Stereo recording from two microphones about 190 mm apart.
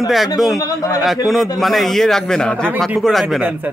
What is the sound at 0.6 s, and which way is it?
Speech, 20° left (ahead or behind).